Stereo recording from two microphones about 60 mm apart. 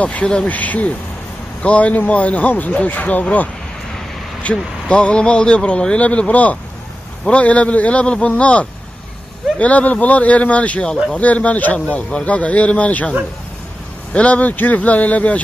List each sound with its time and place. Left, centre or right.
0.0 s speech: left
4.4 s speech: left
14.1 s speech: left